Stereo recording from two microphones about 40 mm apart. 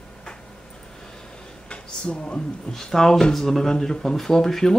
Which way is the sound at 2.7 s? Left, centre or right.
Centre.